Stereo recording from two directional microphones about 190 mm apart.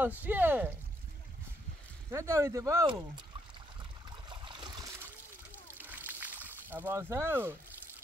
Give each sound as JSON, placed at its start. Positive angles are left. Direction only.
{"t": 0.2, "sound": "speech", "side_deg": -10}
{"t": 2.0, "sound": "speech", "side_deg": -15}
{"t": 4.1, "sound": "stream", "side_deg": -25}
{"t": 5.8, "sound": "slosh", "side_deg": -10}